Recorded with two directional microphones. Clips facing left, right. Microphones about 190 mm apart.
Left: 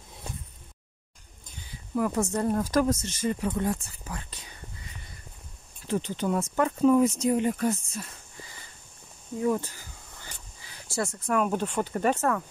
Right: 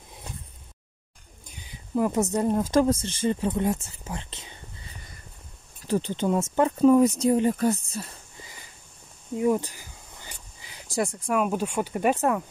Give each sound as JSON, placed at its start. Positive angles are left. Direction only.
{"t": 1.5, "sound": "bird", "side_deg": -15}
{"t": 2.3, "sound": "speech", "side_deg": -15}
{"t": 5.9, "sound": "speech", "side_deg": -30}
{"t": 6.8, "sound": "speech", "side_deg": -40}
{"t": 9.4, "sound": "speech", "side_deg": -15}